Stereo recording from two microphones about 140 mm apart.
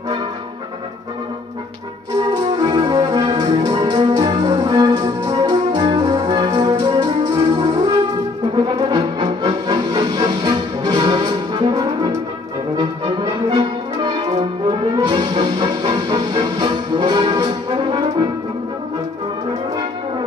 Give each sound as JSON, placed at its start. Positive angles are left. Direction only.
{"t": 2.6, "sound": "music", "side_deg": -30}
{"t": 12.7, "sound": "brass instrument", "side_deg": -30}
{"t": 14.4, "sound": "music", "side_deg": -30}